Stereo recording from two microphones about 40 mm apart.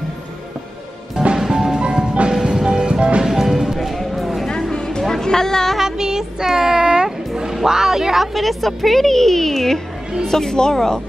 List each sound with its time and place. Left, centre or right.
1.3 s music: centre
1.8 s music: right
3.3 s music: centre
4.7 s a sound: left
5.0 s music: centre
5.8 s music: centre
7.5 s a woman's voice: centre